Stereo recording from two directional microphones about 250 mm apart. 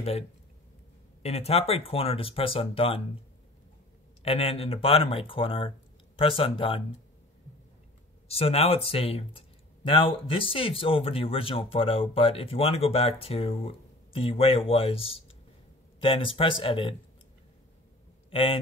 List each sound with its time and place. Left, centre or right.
1.2 s speech: left
4.2 s speech: left
8.3 s speech: left
18.3 s a man's voice: left